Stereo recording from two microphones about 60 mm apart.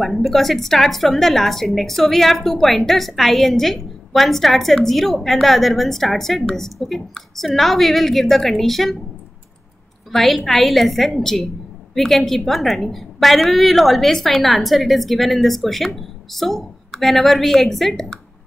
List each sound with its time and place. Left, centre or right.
0.0 s a woman's voice: centre
10.1 s a woman's voice: centre